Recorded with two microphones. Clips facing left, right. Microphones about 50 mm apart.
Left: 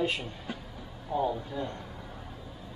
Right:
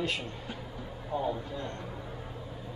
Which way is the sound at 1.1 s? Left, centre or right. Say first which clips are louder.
Left 3 dB; centre.